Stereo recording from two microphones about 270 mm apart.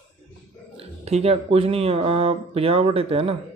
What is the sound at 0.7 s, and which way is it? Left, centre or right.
Speech, right.